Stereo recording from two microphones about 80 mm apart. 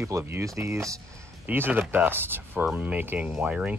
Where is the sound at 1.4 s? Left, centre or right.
Right.